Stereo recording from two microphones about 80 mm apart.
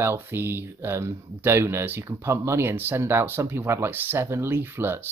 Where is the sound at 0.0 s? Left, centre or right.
Right.